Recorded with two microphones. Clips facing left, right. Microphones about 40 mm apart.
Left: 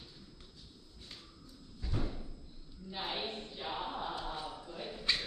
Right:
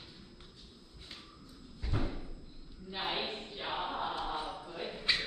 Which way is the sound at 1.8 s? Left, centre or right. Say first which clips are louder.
Right 2 dB; right.